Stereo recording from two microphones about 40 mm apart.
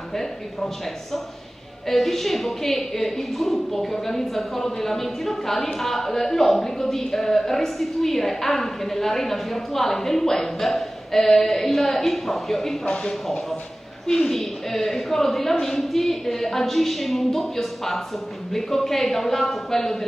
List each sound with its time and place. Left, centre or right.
0.1 s a woman's voice: centre
1.9 s a woman's voice: centre
12.8 s speech: centre
14.0 s a woman's voice: centre